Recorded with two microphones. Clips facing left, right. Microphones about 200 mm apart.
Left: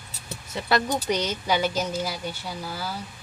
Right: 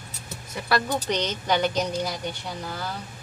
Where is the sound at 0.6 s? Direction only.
20° left (ahead or behind).